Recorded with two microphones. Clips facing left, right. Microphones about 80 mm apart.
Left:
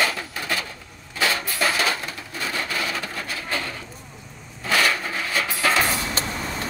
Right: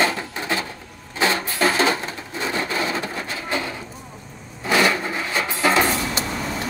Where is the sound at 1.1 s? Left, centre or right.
Right.